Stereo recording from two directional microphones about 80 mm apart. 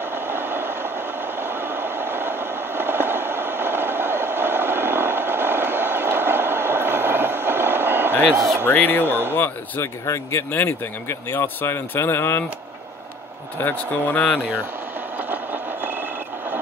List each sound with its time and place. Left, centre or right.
0.0 s train: right
8.3 s speech: centre
8.6 s speech: left
9.0 s speech: right
9.3 s speech: left
10.0 s speech: left
10.5 s speech: left
13.6 s speech: left
15.1 s vehicle: right